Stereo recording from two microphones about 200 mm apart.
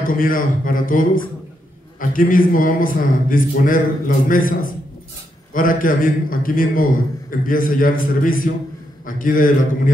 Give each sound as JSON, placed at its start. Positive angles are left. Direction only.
{"t": 0.0, "sound": "a man's voice", "side_deg": 45}